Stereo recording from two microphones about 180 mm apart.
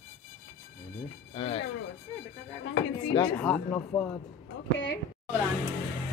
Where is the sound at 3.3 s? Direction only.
5° left (ahead or behind).